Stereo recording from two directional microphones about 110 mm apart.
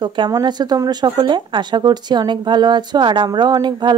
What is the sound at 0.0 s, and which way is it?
Speech, 45° right (ahead or behind).